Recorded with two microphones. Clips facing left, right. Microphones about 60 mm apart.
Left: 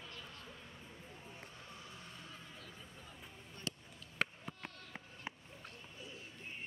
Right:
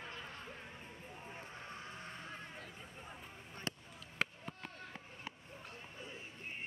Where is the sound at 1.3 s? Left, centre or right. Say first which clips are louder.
Right 7 dB; right.